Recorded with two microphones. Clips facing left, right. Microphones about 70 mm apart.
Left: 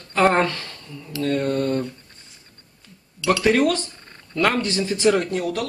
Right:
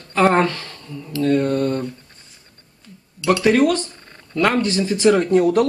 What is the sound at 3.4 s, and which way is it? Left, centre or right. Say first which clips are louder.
Speech: right 3 dB; centre.